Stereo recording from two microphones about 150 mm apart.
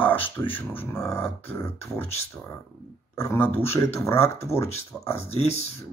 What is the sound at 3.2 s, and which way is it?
Speech, 15° left (ahead or behind).